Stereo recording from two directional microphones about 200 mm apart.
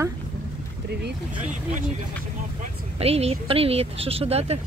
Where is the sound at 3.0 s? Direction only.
30° right (ahead or behind).